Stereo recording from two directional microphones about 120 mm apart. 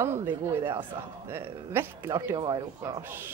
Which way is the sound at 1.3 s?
20° right (ahead or behind).